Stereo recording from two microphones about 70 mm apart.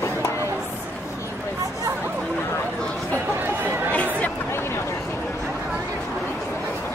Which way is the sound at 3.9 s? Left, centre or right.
Left.